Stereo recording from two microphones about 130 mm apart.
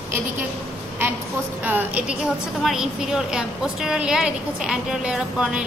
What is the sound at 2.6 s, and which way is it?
A woman's voice, 5° right (ahead or behind).